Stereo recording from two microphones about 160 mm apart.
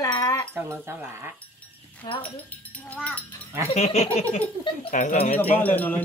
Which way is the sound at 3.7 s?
45° left (ahead or behind).